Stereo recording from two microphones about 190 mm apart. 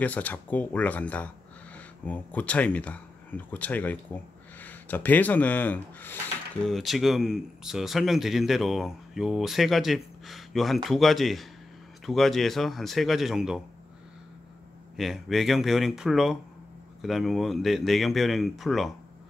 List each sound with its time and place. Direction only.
0.0 s speech: 10° left (ahead or behind)
15.0 s speech: centre (ahead or behind)